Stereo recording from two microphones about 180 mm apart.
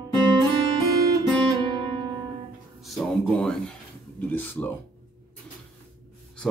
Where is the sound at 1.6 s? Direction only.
25° right (ahead or behind).